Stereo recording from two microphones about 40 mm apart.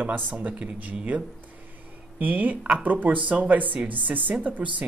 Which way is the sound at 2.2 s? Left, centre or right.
Right.